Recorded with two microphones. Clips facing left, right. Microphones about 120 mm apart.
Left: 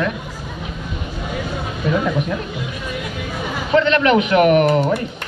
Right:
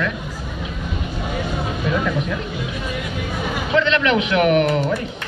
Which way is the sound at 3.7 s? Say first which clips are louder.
Left 4 dB; 40° left (ahead or behind).